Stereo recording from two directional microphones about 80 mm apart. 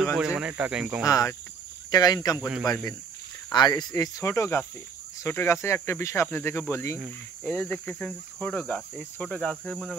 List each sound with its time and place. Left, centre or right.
0.0 s speech: centre
0.3 s speech: centre
1.0 s speech: left
3.5 s speech: left
3.9 s speech: left
7.4 s speech: left